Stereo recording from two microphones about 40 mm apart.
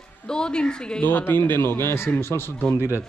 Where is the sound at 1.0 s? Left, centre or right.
Left.